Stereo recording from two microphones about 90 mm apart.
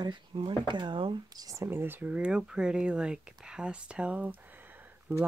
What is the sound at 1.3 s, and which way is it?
Speech, 40° right (ahead or behind).